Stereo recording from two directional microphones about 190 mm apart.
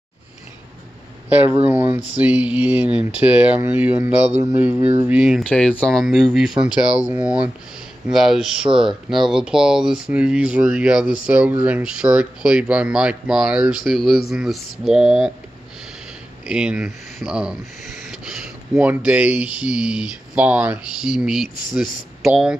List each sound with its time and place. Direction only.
1.3 s speech: 10° right (ahead or behind)
16.4 s speech: 5° right (ahead or behind)